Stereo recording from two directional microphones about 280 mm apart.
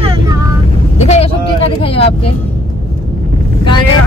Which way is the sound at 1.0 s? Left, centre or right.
Left.